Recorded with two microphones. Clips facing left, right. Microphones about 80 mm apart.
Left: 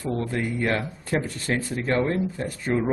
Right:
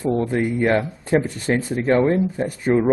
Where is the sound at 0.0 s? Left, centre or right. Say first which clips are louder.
Right 7 dB; right.